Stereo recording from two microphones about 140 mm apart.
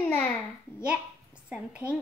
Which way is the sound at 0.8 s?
10° right (ahead or behind).